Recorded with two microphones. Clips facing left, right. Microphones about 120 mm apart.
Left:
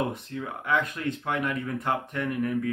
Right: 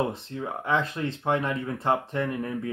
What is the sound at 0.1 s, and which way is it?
Speech, 30° right (ahead or behind).